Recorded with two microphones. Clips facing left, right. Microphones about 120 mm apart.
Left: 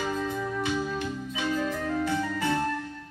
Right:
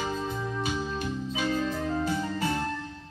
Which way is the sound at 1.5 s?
25° right (ahead or behind).